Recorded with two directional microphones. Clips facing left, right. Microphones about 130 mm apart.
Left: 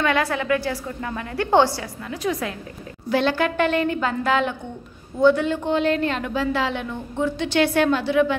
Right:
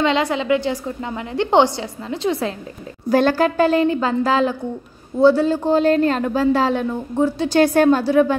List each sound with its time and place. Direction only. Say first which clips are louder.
0.0 s a woman's voice: right 3 dB; 20° right (ahead or behind)
3.1 s a woman's voice: right 5 dB; 45° right (ahead or behind)